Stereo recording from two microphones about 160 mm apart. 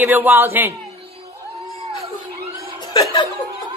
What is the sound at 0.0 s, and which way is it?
Speech, 10° right (ahead or behind).